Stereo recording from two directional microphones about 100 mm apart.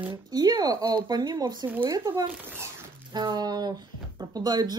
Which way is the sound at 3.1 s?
45° right (ahead or behind).